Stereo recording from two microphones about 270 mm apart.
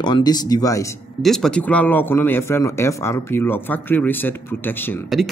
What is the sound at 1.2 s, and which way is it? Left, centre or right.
Speech, centre.